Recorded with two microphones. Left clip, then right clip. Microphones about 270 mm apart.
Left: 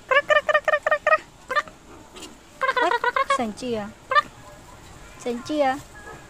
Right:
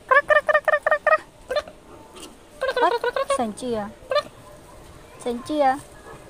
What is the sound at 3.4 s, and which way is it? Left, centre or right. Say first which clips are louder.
Speech: right 2 dB; centre.